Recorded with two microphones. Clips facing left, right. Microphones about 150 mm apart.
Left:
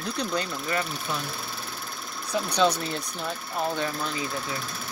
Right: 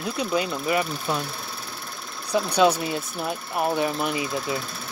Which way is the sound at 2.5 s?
10° right (ahead or behind).